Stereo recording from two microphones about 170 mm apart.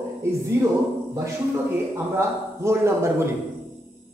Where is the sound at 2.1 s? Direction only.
15° right (ahead or behind).